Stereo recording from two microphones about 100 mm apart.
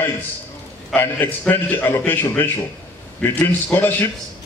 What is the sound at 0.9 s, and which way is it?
A man's voice, 20° left (ahead or behind).